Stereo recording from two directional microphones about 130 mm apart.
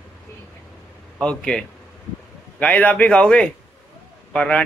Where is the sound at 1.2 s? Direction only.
5° left (ahead or behind).